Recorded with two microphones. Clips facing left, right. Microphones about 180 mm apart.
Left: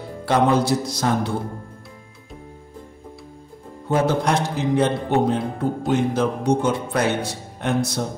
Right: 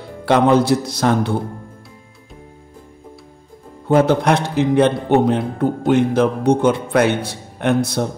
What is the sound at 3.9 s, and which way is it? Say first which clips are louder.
A man's voice: right 5 dB; 60° right (ahead or behind).